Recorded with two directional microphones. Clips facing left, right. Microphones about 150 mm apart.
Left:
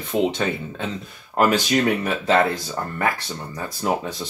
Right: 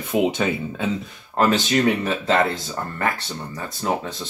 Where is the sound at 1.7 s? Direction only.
15° left (ahead or behind).